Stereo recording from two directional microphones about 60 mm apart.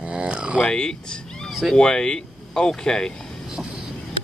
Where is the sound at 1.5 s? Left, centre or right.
Centre.